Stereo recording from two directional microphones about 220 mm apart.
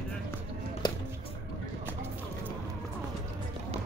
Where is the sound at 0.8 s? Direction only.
20° left (ahead or behind).